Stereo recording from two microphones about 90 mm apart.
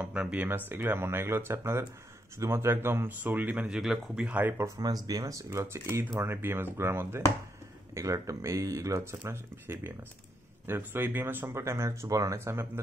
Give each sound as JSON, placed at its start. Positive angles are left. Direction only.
{"t": 0.0, "sound": "speech", "side_deg": -10}
{"t": 3.6, "sound": "speech", "side_deg": -5}
{"t": 4.3, "sound": "speech", "side_deg": -20}
{"t": 4.6, "sound": "speech", "side_deg": -45}